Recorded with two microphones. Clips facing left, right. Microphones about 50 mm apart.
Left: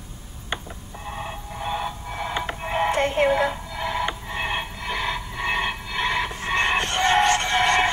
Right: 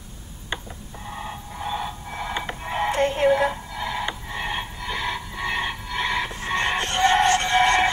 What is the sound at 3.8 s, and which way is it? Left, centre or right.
Music, left.